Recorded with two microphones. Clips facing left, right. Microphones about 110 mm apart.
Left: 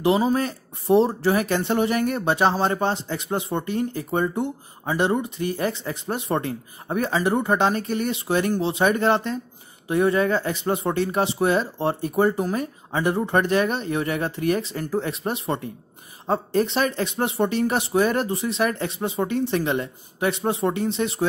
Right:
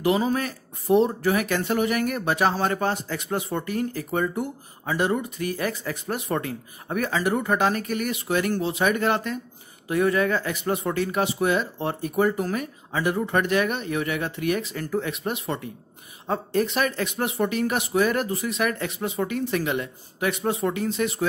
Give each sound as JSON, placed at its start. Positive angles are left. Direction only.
{"t": 0.4, "sound": "speech", "side_deg": 30}